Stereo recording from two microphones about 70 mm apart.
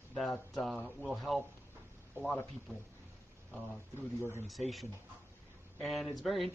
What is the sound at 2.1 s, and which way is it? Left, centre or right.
Speech, right.